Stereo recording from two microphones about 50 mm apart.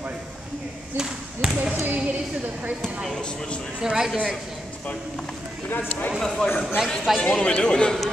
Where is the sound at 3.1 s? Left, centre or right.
Centre.